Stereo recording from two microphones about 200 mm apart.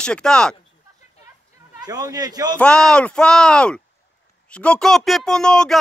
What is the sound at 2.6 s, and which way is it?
Speech, 5° left (ahead or behind).